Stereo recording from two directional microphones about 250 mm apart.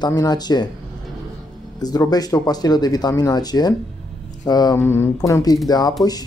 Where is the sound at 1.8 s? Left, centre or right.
Centre.